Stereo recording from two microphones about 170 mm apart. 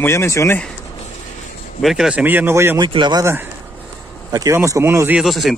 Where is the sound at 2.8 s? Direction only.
25° right (ahead or behind); by 5.5 s centre (ahead or behind).